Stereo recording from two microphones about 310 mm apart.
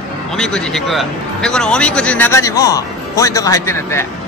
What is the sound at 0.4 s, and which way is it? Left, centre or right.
A man's voice, centre.